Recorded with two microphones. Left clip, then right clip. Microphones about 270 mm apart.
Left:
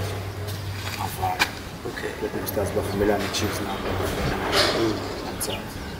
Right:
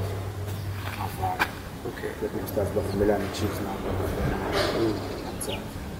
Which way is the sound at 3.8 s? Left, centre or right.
Centre.